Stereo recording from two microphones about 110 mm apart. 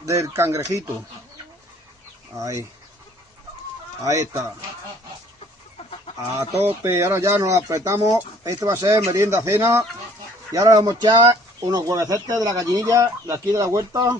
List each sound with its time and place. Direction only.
0.0 s speech: 25° right (ahead or behind)
2.3 s speech: 30° right (ahead or behind)
4.0 s speech: 30° right (ahead or behind)
6.7 s speech: 25° right (ahead or behind)